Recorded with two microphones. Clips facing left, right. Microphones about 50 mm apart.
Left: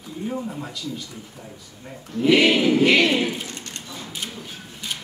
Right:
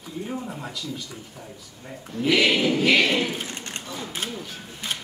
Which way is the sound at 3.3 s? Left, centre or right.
Right.